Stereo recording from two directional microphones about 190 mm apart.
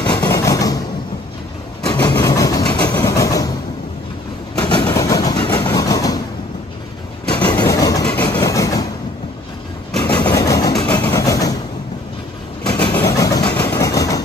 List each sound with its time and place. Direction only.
0.0 s a sound: 20° left (ahead or behind)
1.9 s vehicle: 20° left (ahead or behind)
4.8 s vehicle: 15° left (ahead or behind)
7.2 s vehicle: 25° left (ahead or behind)
10.2 s vehicle: 15° left (ahead or behind)
12.9 s vehicle: 15° left (ahead or behind)